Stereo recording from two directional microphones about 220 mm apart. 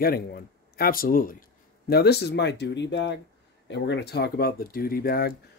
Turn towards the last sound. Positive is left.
turn(degrees=45)  # may be behind; listen again after turning